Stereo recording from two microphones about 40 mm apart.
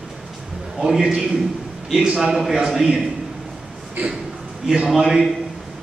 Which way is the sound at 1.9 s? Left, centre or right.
Right.